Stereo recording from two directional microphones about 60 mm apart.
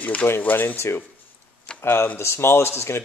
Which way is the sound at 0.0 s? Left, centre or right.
Left.